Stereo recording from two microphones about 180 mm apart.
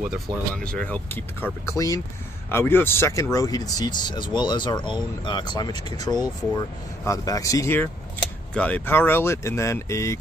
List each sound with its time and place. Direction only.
0.7 s speech: 5° left (ahead or behind)